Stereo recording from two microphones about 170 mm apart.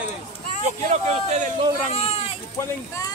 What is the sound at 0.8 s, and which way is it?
Speech, 45° right (ahead or behind).